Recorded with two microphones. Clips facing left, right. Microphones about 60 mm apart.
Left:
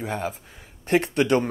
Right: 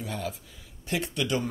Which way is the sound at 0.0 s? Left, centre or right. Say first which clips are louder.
Left 5 dB; left.